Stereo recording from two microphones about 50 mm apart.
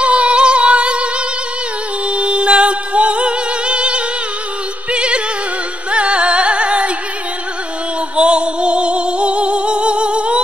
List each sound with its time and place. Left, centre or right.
0.0 s singing: right
2.0 s music: right
8.2 s music: right